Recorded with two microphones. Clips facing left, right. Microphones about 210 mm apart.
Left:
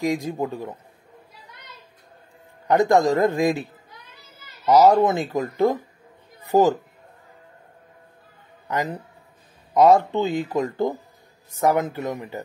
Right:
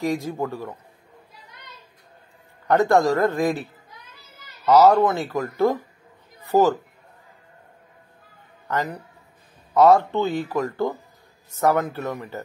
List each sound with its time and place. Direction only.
0.0 s speech: 15° left (ahead or behind)
2.7 s speech: 15° left (ahead or behind)
4.6 s speech: 15° left (ahead or behind)
9.8 s speech: 15° left (ahead or behind)